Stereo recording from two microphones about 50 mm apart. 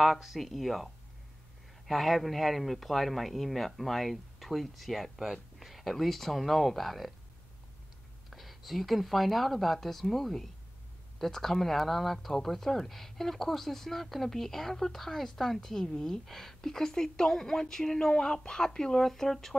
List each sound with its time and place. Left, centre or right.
0.0 s speech: centre
1.9 s speech: centre
8.3 s speech: centre